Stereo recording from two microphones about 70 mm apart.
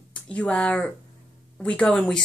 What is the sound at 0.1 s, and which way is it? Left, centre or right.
Speech, centre.